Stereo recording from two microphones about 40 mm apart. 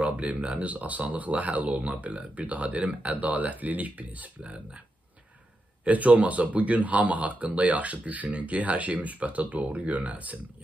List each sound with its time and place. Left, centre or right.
0.0 s speech: right
5.9 s speech: right